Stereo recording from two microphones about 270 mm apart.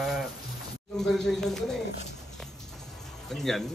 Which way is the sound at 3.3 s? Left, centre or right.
Centre.